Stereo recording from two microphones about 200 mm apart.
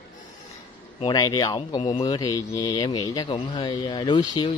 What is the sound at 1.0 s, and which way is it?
Speech, 20° left (ahead or behind).